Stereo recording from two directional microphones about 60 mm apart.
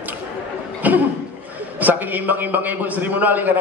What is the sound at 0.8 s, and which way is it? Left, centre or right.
Cough, right.